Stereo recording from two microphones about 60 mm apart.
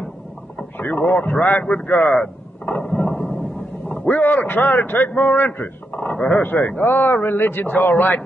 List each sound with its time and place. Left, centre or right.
0.7 s a man's voice: left
2.1 s a sound: centre
4.2 s a man's voice: left
5.9 s dog: left
6.4 s a man's voice: left